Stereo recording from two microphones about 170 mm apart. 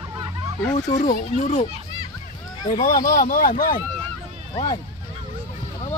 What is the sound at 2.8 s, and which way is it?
Speech, 50° left (ahead or behind).